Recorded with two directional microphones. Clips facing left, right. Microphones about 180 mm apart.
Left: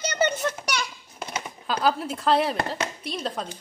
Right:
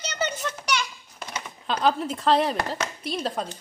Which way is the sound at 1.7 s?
5° left (ahead or behind).